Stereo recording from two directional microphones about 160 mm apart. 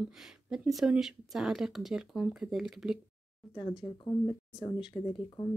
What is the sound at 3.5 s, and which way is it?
Speech, 25° left (ahead or behind).